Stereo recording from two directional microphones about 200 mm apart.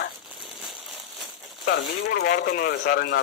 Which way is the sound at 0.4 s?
Centre (ahead or behind).